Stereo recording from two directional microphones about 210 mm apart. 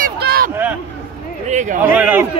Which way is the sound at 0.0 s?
45° right (ahead or behind).